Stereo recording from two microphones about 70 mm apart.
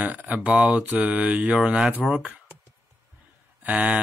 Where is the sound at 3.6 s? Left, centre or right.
Right.